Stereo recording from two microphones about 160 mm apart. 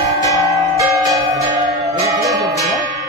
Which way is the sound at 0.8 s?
20° right (ahead or behind).